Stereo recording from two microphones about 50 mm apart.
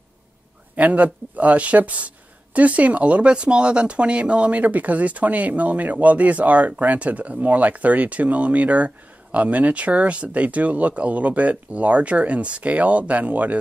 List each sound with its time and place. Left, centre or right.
0.7 s speech: right